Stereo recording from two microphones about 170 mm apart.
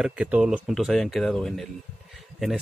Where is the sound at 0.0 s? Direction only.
5° right (ahead or behind).